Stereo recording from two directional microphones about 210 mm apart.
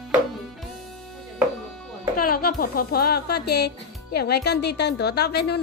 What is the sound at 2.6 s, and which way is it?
A woman's voice, 45° left (ahead or behind).